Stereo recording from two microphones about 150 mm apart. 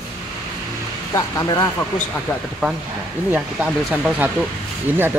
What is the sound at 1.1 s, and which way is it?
Speech, 25° left (ahead or behind).